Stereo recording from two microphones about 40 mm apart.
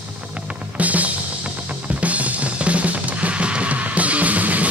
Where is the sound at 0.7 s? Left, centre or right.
Right.